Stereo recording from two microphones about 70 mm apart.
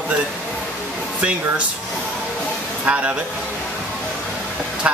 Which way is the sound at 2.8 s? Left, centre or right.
Centre.